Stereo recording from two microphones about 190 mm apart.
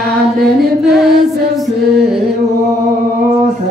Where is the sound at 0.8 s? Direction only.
Centre (ahead or behind).